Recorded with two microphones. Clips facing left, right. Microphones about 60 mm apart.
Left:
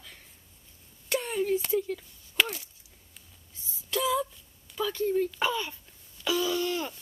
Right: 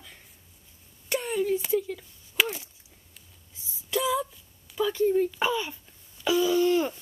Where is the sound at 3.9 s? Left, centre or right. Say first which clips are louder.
Right 1 dB; centre.